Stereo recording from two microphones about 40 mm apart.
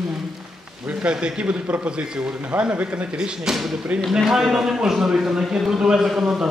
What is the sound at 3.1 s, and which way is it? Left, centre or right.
Speech, right.